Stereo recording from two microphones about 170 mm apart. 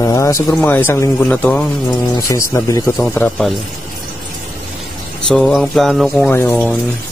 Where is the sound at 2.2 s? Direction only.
20° left (ahead or behind).